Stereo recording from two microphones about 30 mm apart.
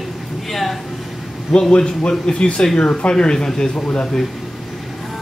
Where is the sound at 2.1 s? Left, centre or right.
Left.